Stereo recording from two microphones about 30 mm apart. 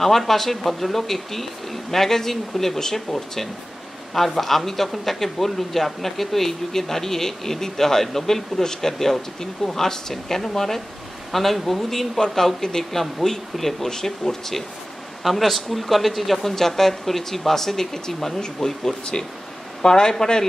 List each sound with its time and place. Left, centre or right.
0.0 s speech: centre
19.8 s speech: left